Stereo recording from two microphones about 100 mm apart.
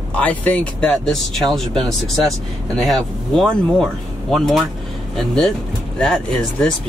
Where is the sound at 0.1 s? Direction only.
15° left (ahead or behind).